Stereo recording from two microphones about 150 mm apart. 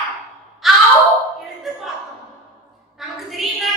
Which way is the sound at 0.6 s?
Centre (ahead or behind).